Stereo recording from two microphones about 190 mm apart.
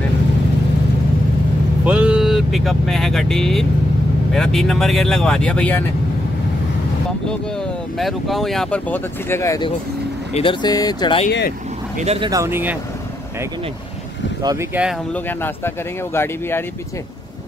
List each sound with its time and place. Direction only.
1.9 s speech: 5° right (ahead or behind)
8.0 s speech: centre (ahead or behind); by 9.7 s 15° left (ahead or behind)
10.3 s speech: 25° left (ahead or behind)
12.0 s speech: 35° right (ahead or behind)
12.3 s speech: 15° right (ahead or behind)
14.4 s speech: 15° right (ahead or behind)
15.1 s speech: 10° left (ahead or behind)